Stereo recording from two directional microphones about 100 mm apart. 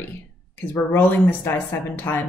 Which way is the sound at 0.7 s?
20° left (ahead or behind).